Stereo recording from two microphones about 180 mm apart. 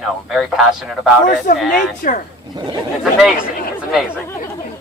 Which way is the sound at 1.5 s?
45° left (ahead or behind).